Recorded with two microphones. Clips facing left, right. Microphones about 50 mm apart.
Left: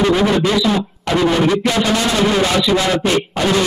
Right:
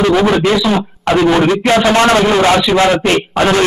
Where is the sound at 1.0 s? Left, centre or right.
Right.